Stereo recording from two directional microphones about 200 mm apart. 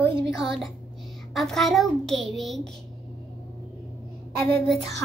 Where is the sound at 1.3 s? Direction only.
Centre (ahead or behind).